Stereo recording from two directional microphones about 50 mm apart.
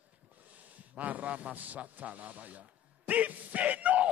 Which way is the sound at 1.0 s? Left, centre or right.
Right.